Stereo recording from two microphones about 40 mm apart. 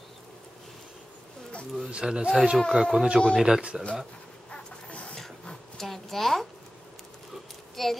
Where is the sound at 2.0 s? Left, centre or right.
Right.